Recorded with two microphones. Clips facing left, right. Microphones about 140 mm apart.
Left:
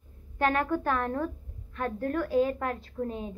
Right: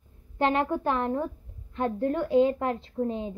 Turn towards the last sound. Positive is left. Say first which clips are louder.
# right 4 dB
turn(degrees=-25)  # may be behind; listen again after turning